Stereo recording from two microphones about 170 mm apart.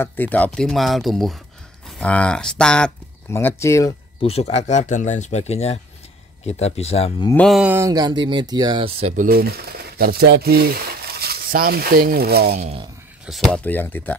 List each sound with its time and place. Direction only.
0.0 s speech: 10° left (ahead or behind)
3.3 s speech: 15° left (ahead or behind)
4.2 s speech: 35° left (ahead or behind)
7.3 s speech: centre (ahead or behind)
7.6 s speech: 15° right (ahead or behind); by 9.1 s 30° right (ahead or behind)
9.1 s speech: 55° right (ahead or behind)
13.3 s speech: centre (ahead or behind)
13.7 s speech: 10° left (ahead or behind)